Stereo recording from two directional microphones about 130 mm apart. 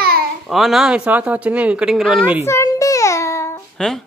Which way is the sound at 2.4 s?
25° left (ahead or behind).